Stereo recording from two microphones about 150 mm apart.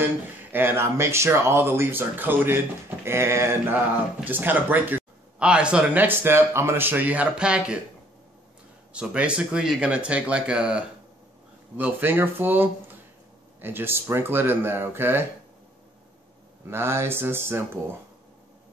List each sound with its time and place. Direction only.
0.0 s speech: 15° right (ahead or behind)
8.9 s speech: 5° right (ahead or behind)
16.7 s speech: 15° right (ahead or behind)